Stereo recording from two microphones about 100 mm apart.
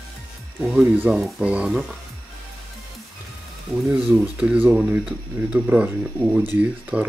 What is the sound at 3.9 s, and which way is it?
Speech, 10° right (ahead or behind).